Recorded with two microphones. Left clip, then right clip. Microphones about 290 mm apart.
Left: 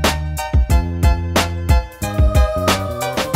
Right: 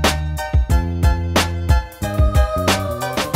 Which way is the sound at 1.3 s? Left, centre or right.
Centre.